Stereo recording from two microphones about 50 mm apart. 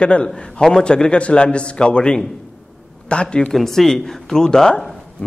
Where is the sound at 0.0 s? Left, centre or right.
Left.